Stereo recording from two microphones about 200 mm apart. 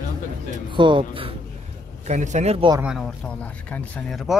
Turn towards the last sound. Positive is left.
turn(degrees=0)  # may be behind; listen again after turning